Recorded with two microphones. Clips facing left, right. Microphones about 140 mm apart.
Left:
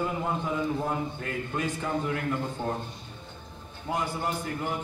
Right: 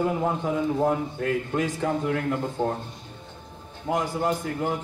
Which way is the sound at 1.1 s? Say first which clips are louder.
Right 7 dB; 90° right.